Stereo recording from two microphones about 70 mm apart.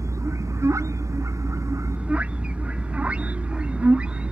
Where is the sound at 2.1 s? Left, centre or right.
Centre.